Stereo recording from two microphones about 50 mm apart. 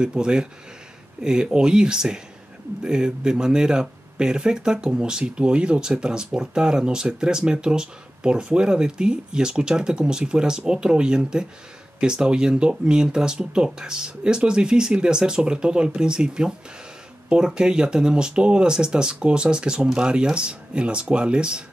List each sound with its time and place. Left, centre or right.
0.0 s speech: centre